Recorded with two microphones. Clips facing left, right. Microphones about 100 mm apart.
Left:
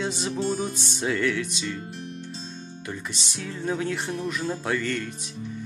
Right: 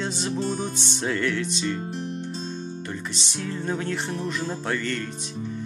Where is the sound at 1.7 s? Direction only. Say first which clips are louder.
Right 5 dB; 40° right (ahead or behind).